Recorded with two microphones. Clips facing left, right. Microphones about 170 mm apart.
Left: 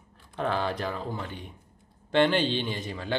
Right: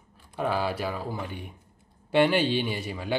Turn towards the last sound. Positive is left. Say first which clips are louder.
# right 1 dB
turn(degrees=-10)  # may be behind; listen again after turning